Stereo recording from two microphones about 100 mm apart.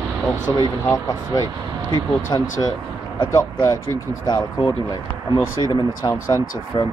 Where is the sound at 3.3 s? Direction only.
30° left (ahead or behind).